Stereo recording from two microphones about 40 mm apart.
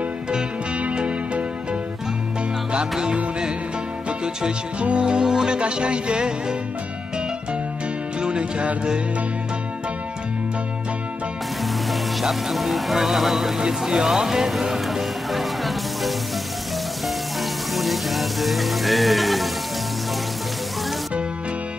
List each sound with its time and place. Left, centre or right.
0.9 s music: right
4.2 s music: right
8.2 s music: right
11.9 s speech: centre
13.6 s music: centre
17.7 s music: centre